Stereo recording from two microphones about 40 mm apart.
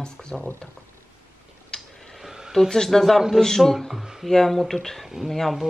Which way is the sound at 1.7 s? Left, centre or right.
Centre.